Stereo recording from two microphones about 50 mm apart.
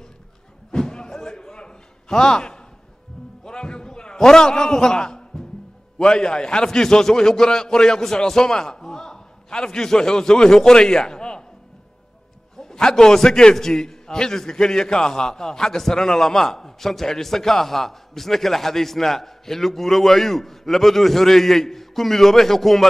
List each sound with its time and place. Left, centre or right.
0.7 s a sound: centre
5.9 s a man's voice: centre
12.5 s a man's voice: centre